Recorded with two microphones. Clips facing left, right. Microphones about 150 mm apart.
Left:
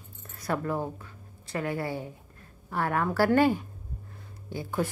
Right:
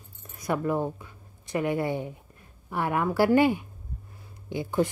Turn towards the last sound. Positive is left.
turn(degrees=-15)  # may be behind; listen again after turning